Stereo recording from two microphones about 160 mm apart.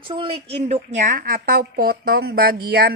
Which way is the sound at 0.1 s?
35° right (ahead or behind).